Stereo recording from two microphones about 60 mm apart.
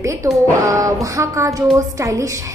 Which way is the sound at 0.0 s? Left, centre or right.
Right.